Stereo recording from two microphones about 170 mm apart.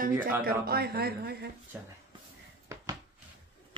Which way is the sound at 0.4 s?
60° right (ahead or behind).